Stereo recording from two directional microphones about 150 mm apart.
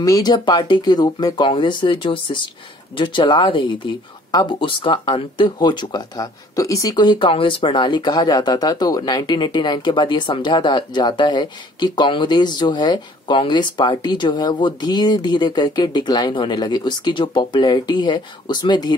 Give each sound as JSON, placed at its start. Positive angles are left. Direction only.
{"t": 0.0, "sound": "speech", "side_deg": 25}